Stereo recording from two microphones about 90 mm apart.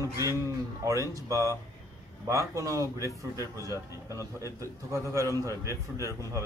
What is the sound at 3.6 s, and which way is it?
Speech, 35° left (ahead or behind).